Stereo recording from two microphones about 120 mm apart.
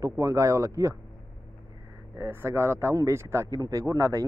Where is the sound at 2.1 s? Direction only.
20° right (ahead or behind).